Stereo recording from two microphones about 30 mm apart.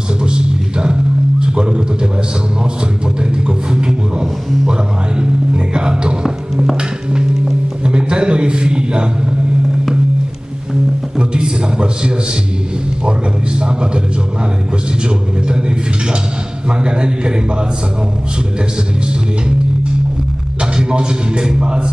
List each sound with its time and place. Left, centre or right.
0.2 s music: right
1.4 s a sound: right
3.2 s beatboxing: right
4.6 s music: right
6.2 s music: centre
7.8 s a sound: right
11.1 s a sound: right
13.6 s a man's voice: right
15.0 s a man's voice: right
16.6 s a man's voice: right
20.7 s a man's voice: right